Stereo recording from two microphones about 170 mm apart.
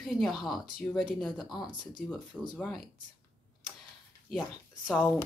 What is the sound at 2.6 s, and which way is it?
Speech, centre (ahead or behind).